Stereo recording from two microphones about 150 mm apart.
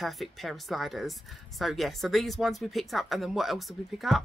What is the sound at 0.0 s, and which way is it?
Speech, centre (ahead or behind).